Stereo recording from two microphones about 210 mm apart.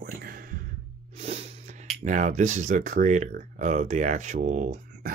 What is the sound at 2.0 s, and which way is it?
Speech, 35° right (ahead or behind).